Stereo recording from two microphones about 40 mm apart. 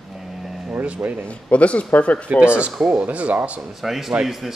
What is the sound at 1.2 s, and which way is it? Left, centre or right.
A man's voice, left.